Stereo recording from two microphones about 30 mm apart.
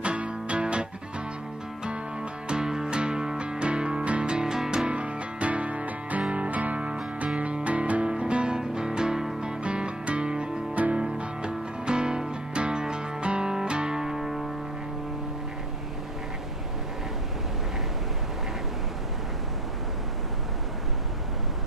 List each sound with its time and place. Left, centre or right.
0.0 s music: right
2.4 s music: right
4.2 s music: right
4.8 s music: right
8.0 s music: right
8.5 s music: right
9.6 s music: right
10.3 s music: right
10.7 s music: right
11.0 s music: right
13.9 s music: centre